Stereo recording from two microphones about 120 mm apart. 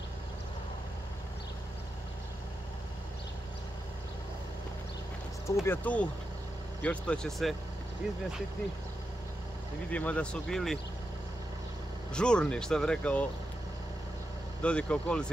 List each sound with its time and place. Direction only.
5.6 s speech: 15° left (ahead or behind)
9.8 s speech: 10° left (ahead or behind)
12.1 s speech: 5° left (ahead or behind)
14.6 s speech: 10° left (ahead or behind)